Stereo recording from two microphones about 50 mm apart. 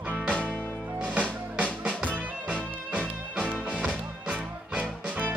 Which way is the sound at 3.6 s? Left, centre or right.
Centre.